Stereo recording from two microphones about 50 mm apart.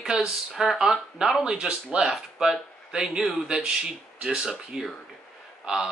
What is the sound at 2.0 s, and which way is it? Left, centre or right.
Speech, centre.